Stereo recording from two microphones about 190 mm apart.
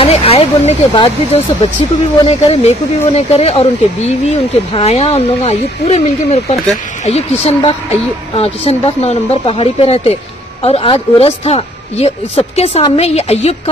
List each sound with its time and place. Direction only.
0.0 s speech: 30° left (ahead or behind)